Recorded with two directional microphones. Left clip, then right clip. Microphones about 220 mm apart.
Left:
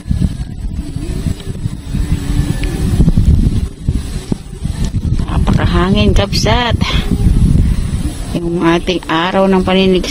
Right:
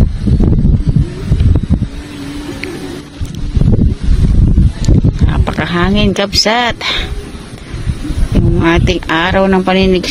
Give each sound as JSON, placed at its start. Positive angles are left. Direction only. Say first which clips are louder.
{"t": 5.3, "sound": "speech", "louder": "left 1 dB", "side_deg": -15}
{"t": 8.4, "sound": "speech", "louder": "right 1 dB", "side_deg": -15}